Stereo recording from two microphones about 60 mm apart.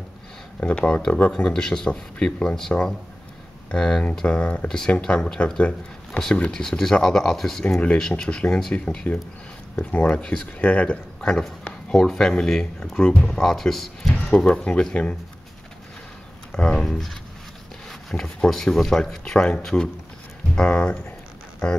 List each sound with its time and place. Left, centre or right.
0.6 s speech: centre
1.3 s speech: centre
7.8 s speech: centre
11.1 s speech: centre
14.3 s speech: centre
16.5 s speech: centre
17.8 s a sound: centre
18.5 s speech: centre